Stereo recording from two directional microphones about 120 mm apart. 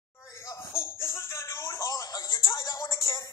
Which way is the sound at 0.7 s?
25° left (ahead or behind).